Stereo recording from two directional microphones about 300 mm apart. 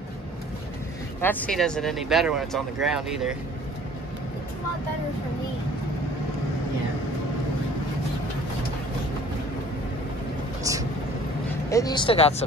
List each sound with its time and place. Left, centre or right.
1.2 s speech: centre
10.6 s vehicle: centre
11.7 s speech: centre